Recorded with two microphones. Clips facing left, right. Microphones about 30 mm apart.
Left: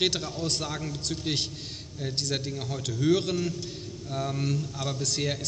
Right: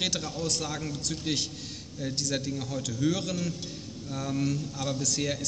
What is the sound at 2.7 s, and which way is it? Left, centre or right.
A man's voice, left.